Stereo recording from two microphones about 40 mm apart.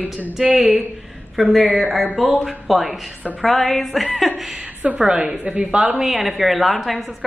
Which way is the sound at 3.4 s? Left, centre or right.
Centre.